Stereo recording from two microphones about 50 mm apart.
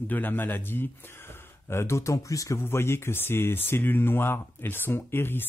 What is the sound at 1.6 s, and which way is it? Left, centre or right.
Speech, left.